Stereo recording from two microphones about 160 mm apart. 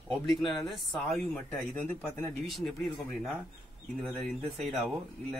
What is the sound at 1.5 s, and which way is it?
Speech, 10° left (ahead or behind).